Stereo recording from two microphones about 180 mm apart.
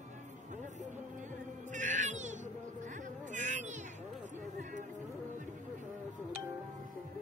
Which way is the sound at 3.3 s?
45° right (ahead or behind).